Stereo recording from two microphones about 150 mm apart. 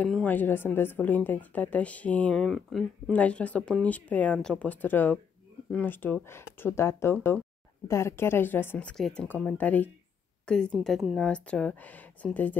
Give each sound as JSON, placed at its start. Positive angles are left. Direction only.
{"t": 0.0, "sound": "a woman's voice", "side_deg": 10}